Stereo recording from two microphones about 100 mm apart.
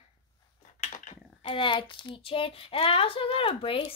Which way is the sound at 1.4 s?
65° left (ahead or behind).